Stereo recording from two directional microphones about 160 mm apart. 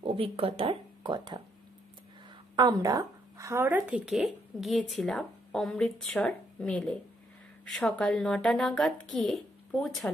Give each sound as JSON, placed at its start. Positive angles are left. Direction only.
{"t": 0.0, "sound": "speech", "side_deg": -35}
{"t": 2.5, "sound": "speech", "side_deg": -25}